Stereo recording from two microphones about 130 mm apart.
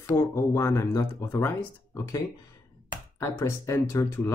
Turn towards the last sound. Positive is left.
turn(degrees=20)  # may be behind; listen again after turning